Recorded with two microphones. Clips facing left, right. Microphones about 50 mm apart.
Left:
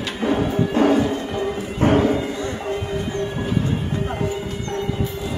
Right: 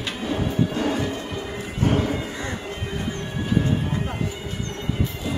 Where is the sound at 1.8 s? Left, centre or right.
Left.